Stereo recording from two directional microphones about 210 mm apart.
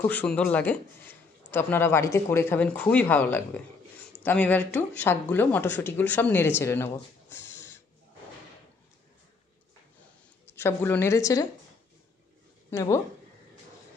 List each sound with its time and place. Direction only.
0.0 s speech: 10° left (ahead or behind)
7.4 s a sound: 10° left (ahead or behind)
10.4 s speech: 10° left (ahead or behind)
12.7 s speech: 15° left (ahead or behind)